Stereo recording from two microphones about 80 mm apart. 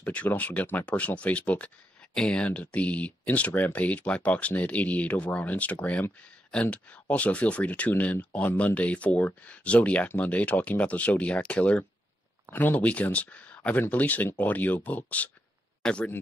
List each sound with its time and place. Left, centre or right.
0.0 s speech: centre